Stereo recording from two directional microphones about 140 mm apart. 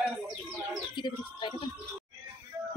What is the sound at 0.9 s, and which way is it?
Bird, 35° left (ahead or behind).